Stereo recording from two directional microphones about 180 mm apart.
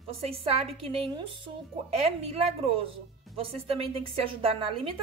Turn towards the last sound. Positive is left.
turn(degrees=-30)  # may be behind; listen again after turning